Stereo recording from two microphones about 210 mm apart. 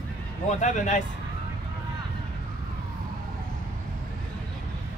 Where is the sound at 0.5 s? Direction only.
35° left (ahead or behind).